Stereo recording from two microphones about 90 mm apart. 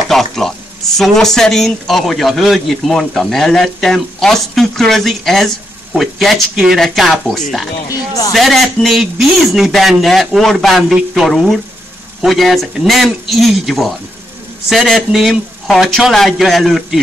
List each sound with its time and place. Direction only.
0.1 s frying: 5° left (ahead or behind)
0.9 s a man's voice: 5° left (ahead or behind)